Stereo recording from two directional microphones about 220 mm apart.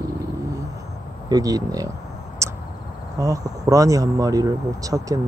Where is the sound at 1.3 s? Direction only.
15° right (ahead or behind).